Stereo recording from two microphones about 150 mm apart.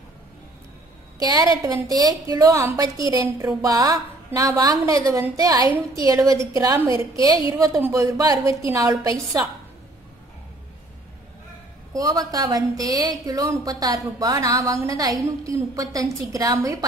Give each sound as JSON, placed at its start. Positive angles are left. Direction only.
{"t": 1.2, "sound": "a woman's voice", "side_deg": -25}
{"t": 11.9, "sound": "a woman's voice", "side_deg": -25}